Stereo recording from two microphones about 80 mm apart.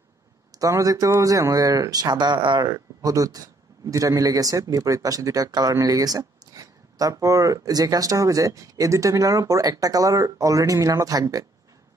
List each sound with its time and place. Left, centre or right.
0.5 s a man's voice: right
2.6 s a man's voice: right